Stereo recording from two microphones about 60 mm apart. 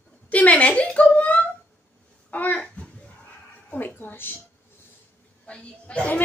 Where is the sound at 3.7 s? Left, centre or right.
Left.